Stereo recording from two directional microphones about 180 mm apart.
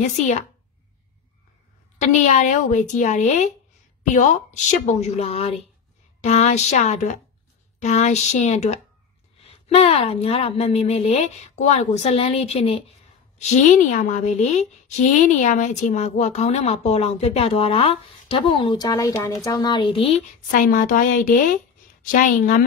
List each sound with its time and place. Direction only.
2.0 s a woman's voice: 40° left (ahead or behind)
20.5 s a woman's voice: 50° left (ahead or behind)